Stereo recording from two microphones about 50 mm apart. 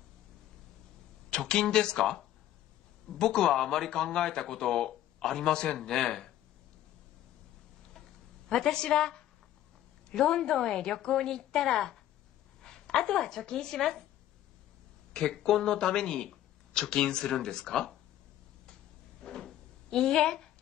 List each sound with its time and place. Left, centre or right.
1.3 s speech: centre
8.5 s a woman's voice: centre
15.1 s speech: centre
19.2 s cupboard open or close: centre